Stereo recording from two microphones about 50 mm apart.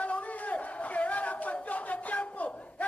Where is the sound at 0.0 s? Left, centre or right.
Left.